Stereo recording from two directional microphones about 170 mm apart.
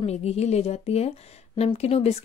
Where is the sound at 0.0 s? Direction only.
40° left (ahead or behind).